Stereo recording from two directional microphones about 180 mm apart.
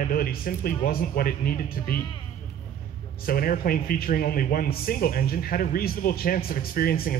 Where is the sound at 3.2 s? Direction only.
55° left (ahead or behind).